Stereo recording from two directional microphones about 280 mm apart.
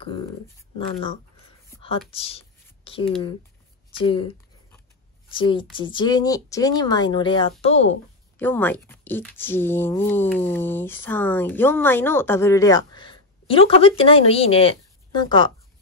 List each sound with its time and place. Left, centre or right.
1.7 s a sound: centre
4.0 s speech: centre
5.3 s speech: centre
8.4 s speech: centre